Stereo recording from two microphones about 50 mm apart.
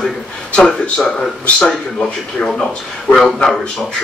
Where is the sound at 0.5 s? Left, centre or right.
Left.